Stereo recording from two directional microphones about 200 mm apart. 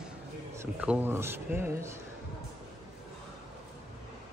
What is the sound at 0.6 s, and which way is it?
Speech, 10° right (ahead or behind).